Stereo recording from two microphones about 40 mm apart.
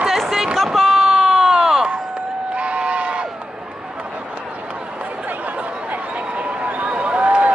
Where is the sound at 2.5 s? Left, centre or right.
Right.